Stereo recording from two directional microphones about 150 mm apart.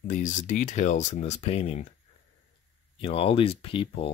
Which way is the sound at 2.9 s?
35° left (ahead or behind).